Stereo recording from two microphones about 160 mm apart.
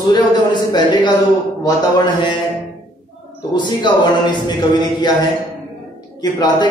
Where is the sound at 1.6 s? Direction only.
25° left (ahead or behind).